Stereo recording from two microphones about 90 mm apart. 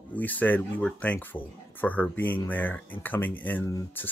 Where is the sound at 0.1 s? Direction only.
20° left (ahead or behind).